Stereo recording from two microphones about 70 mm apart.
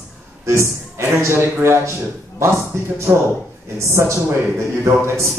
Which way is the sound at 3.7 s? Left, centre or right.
Right.